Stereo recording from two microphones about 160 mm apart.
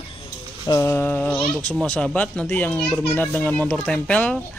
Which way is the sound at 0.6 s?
20° left (ahead or behind).